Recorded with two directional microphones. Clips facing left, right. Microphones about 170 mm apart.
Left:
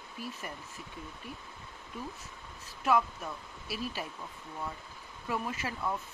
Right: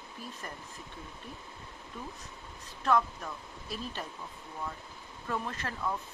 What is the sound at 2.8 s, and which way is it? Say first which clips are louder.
Speech: even; 10° left (ahead or behind).